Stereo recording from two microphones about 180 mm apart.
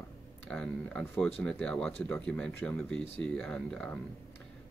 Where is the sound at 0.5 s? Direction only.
5° left (ahead or behind).